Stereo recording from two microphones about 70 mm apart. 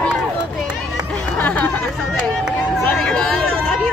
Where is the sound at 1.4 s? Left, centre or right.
Left.